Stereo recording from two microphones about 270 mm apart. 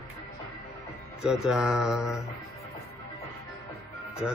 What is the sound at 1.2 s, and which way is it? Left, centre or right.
Speech, centre.